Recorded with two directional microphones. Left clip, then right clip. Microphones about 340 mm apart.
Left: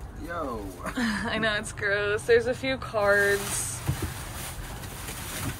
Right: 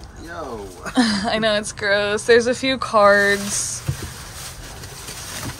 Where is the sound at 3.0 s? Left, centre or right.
Right.